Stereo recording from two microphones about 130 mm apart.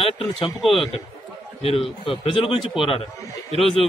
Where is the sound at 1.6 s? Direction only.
50° left (ahead or behind).